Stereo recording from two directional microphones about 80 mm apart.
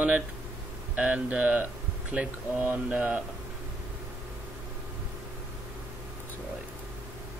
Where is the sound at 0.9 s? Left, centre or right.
Centre.